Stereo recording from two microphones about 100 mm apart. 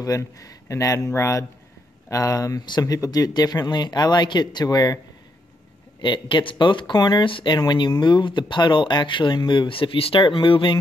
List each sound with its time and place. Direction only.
0.0 s speech: 35° left (ahead or behind)
5.9 s speech: 50° left (ahead or behind)
7.2 s speech: 60° left (ahead or behind)
7.5 s speech: 45° left (ahead or behind)